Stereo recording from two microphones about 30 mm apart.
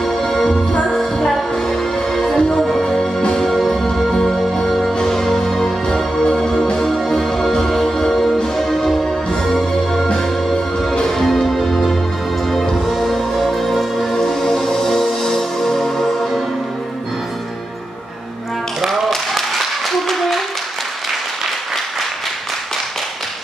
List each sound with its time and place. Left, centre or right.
0.0 s music: centre
2.3 s music: left
3.3 s music: centre
10.1 s music: centre
14.1 s music: centre
20.1 s a sound: centre